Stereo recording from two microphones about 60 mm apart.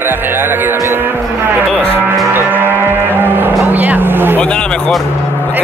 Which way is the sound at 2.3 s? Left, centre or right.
Right.